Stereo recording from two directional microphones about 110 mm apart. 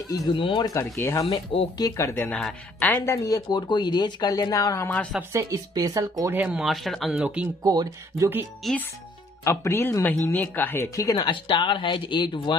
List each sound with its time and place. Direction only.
0.3 s speech: 50° left (ahead or behind)
0.7 s speech: 25° left (ahead or behind)
2.0 s speech: 15° left (ahead or behind)
3.3 s speech: 35° left (ahead or behind)
5.3 s speech: 30° right (ahead or behind)
6.3 s speech: 15° right (ahead or behind)
6.6 s speech: centre (ahead or behind)
7.6 s speech: 35° right (ahead or behind)
8.6 s speech: centre (ahead or behind)
9.4 s speech: 25° left (ahead or behind)
11.4 s speech: 45° left (ahead or behind)